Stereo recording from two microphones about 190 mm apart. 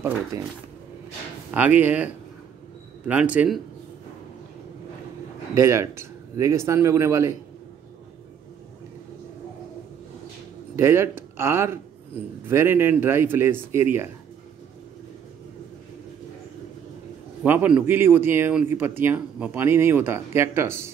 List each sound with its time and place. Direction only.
0.3 s speech: 20° right (ahead or behind)
1.5 s speech: 10° right (ahead or behind)
3.1 s speech: 10° right (ahead or behind)
5.5 s speech: 15° right (ahead or behind)
10.8 s speech: 15° right (ahead or behind)
17.4 s speech: 10° right (ahead or behind)